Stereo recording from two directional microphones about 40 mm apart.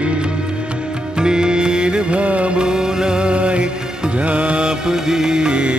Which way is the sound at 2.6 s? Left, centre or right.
Centre.